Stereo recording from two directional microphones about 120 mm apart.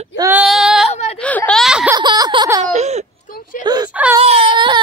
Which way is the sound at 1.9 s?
30° right (ahead or behind).